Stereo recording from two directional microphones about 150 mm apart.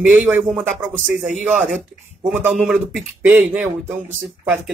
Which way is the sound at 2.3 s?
10° right (ahead or behind).